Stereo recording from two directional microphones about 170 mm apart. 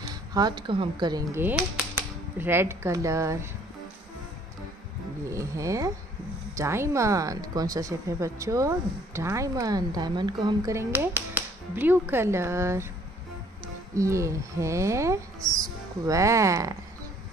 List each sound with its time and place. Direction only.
0.1 s a woman's voice: 25° right (ahead or behind)
1.4 s speech: 5° right (ahead or behind)
5.3 s speech: 20° right (ahead or behind)
13.9 s speech: 15° right (ahead or behind)